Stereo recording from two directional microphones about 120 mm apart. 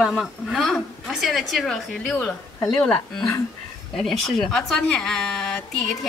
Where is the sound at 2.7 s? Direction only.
5° left (ahead or behind).